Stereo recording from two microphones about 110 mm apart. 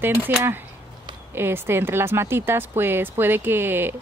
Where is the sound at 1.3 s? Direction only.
20° right (ahead or behind).